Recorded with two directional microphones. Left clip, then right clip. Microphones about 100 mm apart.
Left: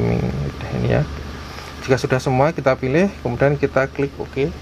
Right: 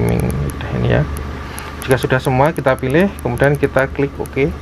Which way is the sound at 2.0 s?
85° left.